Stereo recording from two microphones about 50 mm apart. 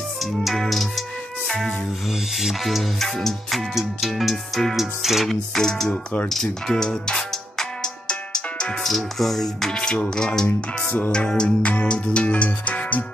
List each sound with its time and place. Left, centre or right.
0.2 s music: centre
2.0 s music: centre
8.8 s music: centre
9.8 s speech: centre
11.7 s music: left